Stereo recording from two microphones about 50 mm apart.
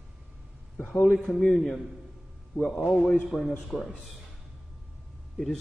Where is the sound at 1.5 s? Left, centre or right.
Centre.